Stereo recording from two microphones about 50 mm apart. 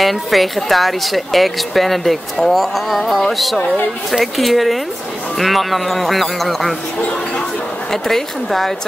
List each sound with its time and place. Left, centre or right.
0.0 s speech: centre
7.0 s speech: left
7.9 s speech: centre